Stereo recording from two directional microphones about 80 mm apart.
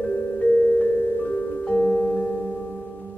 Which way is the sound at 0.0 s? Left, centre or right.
Left.